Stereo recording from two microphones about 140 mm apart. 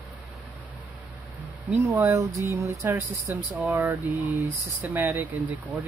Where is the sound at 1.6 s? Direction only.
10° right (ahead or behind).